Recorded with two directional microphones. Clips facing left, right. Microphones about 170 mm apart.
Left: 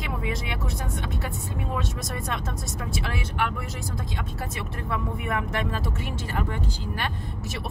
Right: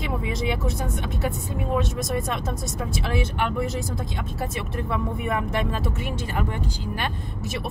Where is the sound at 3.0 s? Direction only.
25° right (ahead or behind).